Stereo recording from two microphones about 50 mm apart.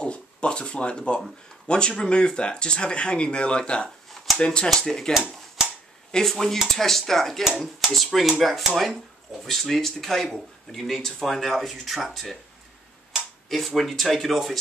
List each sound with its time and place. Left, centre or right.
0.0 s a sound: left
1.7 s speech: centre
6.1 s speech: centre
13.5 s speech: centre